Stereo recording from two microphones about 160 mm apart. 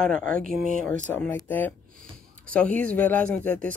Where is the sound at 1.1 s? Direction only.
10° left (ahead or behind).